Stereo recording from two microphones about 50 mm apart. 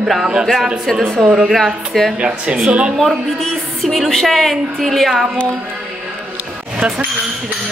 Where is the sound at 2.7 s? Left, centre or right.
Right.